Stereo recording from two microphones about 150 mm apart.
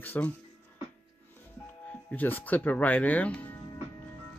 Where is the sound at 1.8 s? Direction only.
10° left (ahead or behind).